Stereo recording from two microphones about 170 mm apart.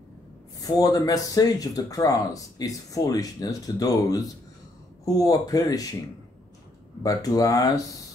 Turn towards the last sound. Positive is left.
turn(degrees=20)  # may be behind; listen again after turning